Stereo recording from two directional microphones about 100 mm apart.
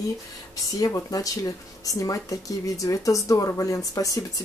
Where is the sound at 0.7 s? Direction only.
35° left (ahead or behind).